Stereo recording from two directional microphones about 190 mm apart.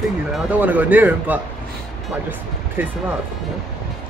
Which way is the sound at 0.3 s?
10° right (ahead or behind).